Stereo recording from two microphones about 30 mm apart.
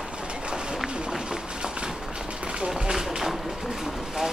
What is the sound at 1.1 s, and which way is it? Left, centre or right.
Run, right.